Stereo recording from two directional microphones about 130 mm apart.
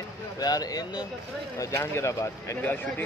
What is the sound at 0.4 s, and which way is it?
Speech, 30° left (ahead or behind).